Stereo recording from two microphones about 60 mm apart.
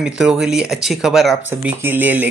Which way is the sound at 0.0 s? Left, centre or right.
Centre.